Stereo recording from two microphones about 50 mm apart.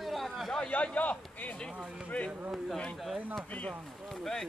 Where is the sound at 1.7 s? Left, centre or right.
Centre.